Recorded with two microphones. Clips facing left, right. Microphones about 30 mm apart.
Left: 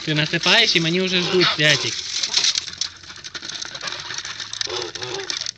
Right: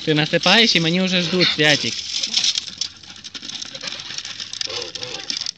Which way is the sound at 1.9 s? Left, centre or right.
Right.